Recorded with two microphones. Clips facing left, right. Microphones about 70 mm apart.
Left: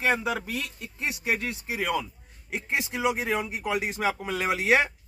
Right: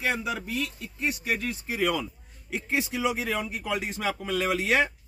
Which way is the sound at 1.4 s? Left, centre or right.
Centre.